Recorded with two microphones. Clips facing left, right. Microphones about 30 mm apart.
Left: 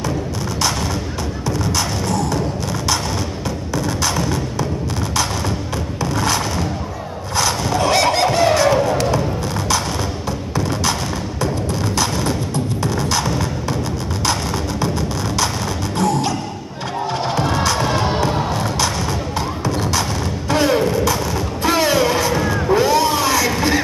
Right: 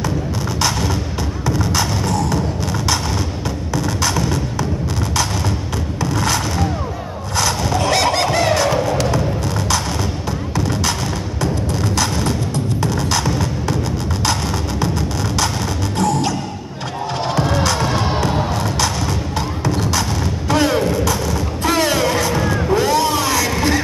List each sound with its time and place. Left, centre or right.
1.6 s music: centre
3.7 s music: centre
5.9 s music: centre
7.3 s squeal: centre
12.0 s music: centre
16.0 s music: centre
17.4 s music: centre
19.3 s a sound: centre